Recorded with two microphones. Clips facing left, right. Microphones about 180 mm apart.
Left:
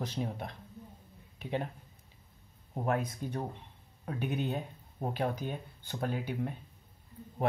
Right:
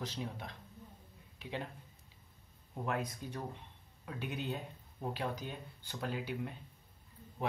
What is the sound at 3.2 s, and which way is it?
Speech, 50° left (ahead or behind).